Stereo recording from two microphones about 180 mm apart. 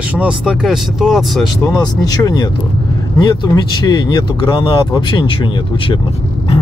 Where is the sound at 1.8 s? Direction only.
20° left (ahead or behind).